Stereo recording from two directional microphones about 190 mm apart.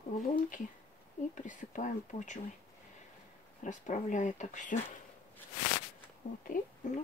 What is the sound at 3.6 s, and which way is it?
Speech, 40° left (ahead or behind).